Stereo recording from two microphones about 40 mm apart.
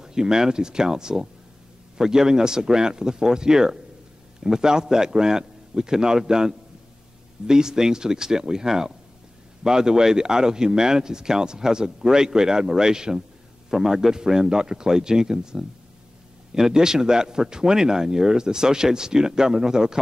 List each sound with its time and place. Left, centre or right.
0.0 s speech: centre